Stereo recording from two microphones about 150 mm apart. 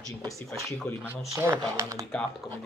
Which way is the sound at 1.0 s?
15° right (ahead or behind).